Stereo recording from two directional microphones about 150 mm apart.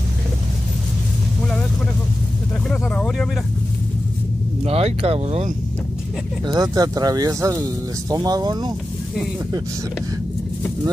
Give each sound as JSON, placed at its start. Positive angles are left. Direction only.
{"t": 2.7, "sound": "vehicle", "side_deg": 5}
{"t": 4.6, "sound": "speech", "side_deg": -40}
{"t": 6.4, "sound": "speech", "side_deg": -25}